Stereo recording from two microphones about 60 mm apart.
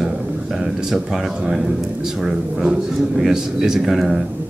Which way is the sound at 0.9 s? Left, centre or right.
Centre.